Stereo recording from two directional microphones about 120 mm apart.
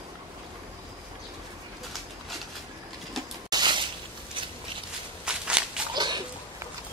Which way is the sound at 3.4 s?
35° right (ahead or behind).